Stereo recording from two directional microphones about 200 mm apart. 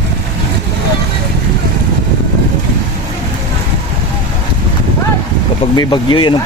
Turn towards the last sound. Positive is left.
turn(degrees=25)  # may be behind; listen again after turning